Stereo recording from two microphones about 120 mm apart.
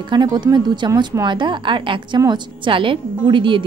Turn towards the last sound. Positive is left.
turn(degrees=-45)  # may be behind; listen again after turning